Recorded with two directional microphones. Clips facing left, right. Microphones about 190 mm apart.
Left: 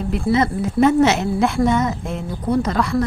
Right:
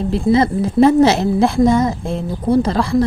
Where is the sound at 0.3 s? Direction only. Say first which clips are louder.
Right 4 dB; 30° right (ahead or behind).